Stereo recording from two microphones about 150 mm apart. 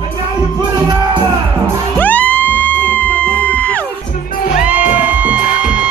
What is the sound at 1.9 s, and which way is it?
Music, 10° left (ahead or behind).